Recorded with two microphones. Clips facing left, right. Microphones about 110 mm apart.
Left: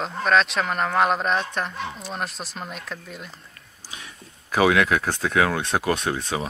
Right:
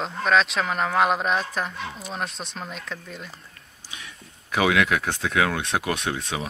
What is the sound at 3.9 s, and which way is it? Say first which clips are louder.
Speech: left 1 dB; 35° left (ahead or behind).